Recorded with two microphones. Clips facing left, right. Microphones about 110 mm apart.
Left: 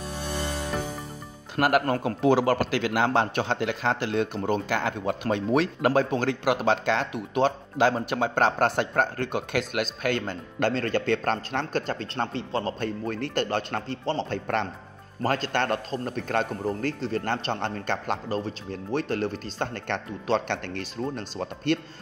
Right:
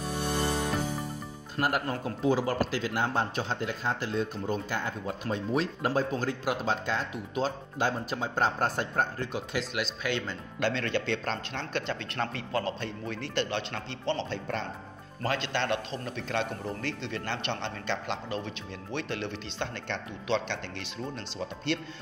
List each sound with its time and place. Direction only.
1.6 s speech: 80° left; by 12.7 s 30° left (ahead or behind)
12.8 s a man's voice: 45° left (ahead or behind)